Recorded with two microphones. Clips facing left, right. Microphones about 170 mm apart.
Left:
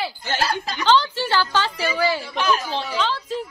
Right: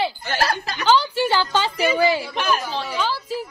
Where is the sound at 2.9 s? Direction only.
10° right (ahead or behind).